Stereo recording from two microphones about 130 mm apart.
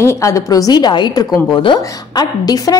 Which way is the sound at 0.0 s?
25° left (ahead or behind).